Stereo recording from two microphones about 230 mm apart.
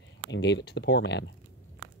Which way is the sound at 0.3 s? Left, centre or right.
Left.